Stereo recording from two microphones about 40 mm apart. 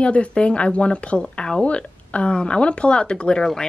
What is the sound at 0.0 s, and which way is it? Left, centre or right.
A woman's voice, left.